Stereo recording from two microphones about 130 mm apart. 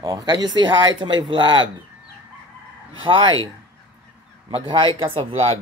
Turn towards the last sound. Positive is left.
turn(degrees=-45)  # may be behind; listen again after turning